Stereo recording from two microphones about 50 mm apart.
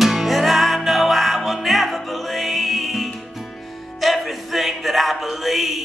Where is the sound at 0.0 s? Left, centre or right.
Centre.